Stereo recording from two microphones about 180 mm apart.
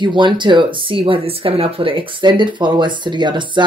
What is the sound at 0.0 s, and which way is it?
Speech, 25° right (ahead or behind).